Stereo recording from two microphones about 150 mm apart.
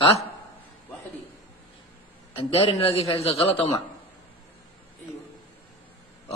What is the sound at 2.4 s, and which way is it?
A man's voice, 40° left (ahead or behind).